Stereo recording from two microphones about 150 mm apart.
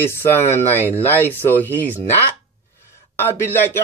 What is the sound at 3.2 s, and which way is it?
Speech, 15° left (ahead or behind).